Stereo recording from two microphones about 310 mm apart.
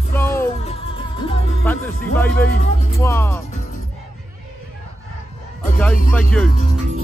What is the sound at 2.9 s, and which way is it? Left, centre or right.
Speech, centre.